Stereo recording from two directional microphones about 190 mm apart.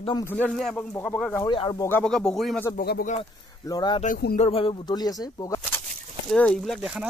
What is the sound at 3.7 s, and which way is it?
Speech, 20° left (ahead or behind).